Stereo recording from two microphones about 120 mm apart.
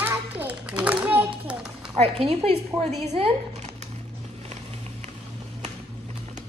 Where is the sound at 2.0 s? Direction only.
55° right (ahead or behind).